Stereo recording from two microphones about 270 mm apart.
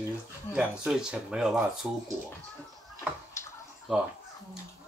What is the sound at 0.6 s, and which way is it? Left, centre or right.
Speech, centre.